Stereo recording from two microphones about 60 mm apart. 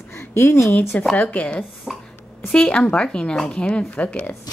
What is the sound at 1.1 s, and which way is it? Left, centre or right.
Speech, left.